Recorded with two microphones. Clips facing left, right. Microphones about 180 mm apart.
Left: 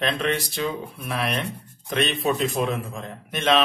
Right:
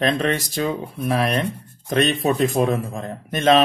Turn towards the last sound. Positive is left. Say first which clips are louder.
# right 5 dB
turn(degrees=-40)  # may be behind; listen again after turning